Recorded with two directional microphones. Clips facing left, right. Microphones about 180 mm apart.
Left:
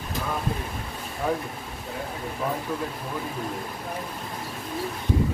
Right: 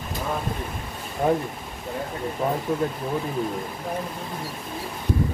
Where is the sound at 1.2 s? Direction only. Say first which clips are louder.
Right 5 dB; 35° right (ahead or behind).